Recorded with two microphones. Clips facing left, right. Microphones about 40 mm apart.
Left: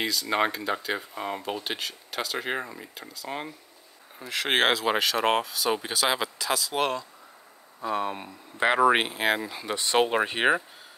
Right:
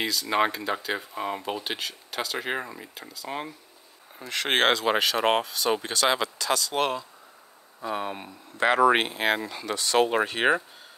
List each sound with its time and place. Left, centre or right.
0.0 s speech: centre
9.8 s speech: left
10.1 s speech: centre